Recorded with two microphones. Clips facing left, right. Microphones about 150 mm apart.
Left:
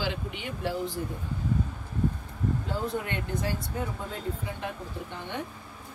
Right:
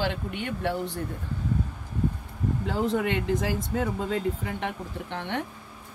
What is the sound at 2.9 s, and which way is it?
Speech, 90° right.